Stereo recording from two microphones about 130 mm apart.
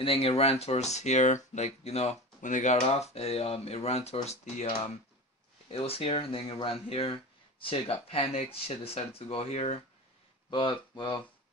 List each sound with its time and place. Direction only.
0.0 s speech: 45° left (ahead or behind)
5.7 s speech: 50° left (ahead or behind)
10.5 s speech: 40° left (ahead or behind)